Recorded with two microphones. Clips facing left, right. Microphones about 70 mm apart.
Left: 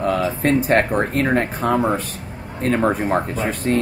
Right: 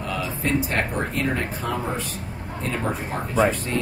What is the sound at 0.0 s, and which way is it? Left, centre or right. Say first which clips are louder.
Speech: left 8 dB; left.